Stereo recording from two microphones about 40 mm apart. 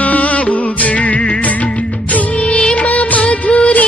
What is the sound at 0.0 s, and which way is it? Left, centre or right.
Music, left.